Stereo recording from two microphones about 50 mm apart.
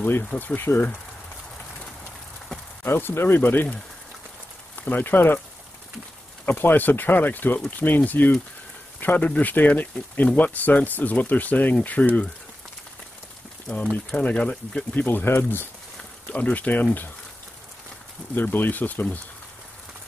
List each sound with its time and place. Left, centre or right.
0.6 s speech: left
2.8 s speech: left
4.7 s speech: left
6.4 s speech: left
14.1 s speech: left
15.0 s speech: left
16.3 s speech: left
18.3 s speech: left